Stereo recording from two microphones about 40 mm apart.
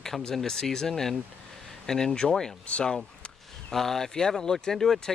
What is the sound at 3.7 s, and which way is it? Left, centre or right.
Speech, centre.